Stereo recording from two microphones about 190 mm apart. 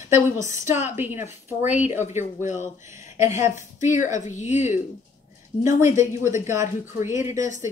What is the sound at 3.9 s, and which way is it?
Speech, 40° left (ahead or behind).